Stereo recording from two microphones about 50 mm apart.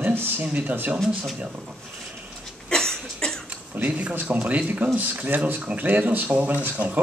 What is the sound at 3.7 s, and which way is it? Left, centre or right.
Speech, right.